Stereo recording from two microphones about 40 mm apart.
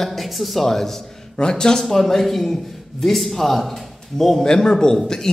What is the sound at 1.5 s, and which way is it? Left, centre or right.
A man's voice, centre.